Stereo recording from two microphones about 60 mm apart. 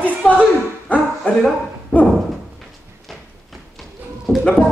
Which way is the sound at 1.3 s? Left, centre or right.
Left.